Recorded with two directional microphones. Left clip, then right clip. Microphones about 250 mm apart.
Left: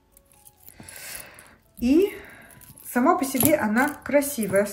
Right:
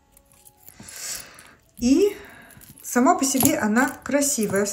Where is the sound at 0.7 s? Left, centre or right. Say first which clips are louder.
Right 5 dB; centre.